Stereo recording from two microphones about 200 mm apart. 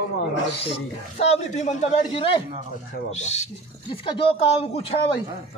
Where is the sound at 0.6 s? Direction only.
30° left (ahead or behind).